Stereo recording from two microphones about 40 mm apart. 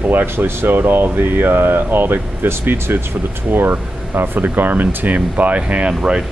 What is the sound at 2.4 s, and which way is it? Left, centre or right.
Speech, right.